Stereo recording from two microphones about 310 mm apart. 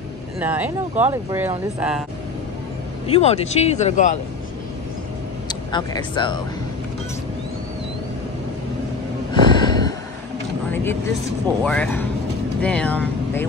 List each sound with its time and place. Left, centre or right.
0.4 s speech: centre
3.1 s speech: centre
5.5 s speech: centre
9.3 s gasp: centre
10.7 s vehicle: centre
11.6 s speech: centre